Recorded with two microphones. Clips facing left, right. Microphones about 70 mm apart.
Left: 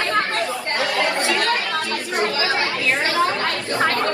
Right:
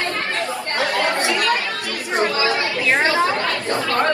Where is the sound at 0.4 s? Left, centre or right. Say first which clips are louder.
Even; right.